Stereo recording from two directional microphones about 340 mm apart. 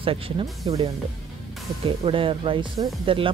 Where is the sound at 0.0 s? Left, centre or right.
Centre.